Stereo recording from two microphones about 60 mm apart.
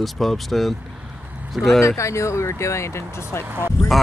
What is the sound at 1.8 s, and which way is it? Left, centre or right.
Speech, left.